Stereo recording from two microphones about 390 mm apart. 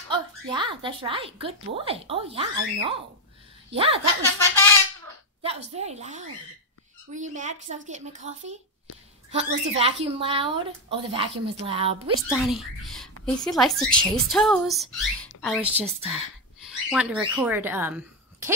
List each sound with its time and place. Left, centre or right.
0.1 s a woman's voice: centre
5.8 s a woman's voice: centre
12.2 s speech: centre